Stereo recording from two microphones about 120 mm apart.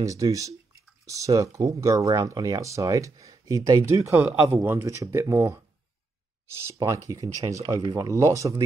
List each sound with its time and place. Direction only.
0.0 s speech: 25° right (ahead or behind)